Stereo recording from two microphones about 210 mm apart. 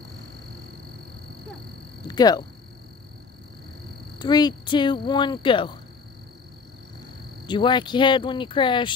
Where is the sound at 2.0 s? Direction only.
20° left (ahead or behind).